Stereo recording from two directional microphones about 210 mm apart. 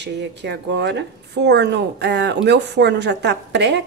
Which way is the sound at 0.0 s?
55° right (ahead or behind).